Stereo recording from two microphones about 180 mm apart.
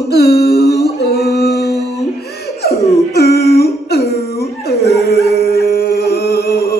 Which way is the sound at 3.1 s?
60° left (ahead or behind).